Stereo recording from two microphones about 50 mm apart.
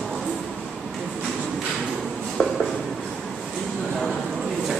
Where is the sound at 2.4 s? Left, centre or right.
Left.